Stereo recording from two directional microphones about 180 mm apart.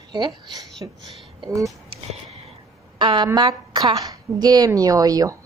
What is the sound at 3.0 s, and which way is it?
A woman's voice, 25° right (ahead or behind).